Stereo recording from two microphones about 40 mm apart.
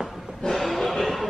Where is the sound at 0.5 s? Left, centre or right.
Centre.